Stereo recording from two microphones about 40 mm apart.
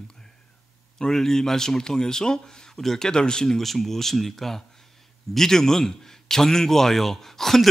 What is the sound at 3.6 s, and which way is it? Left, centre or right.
A man's voice, centre.